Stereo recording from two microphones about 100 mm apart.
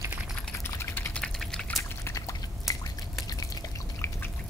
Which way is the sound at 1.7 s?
30° left (ahead or behind).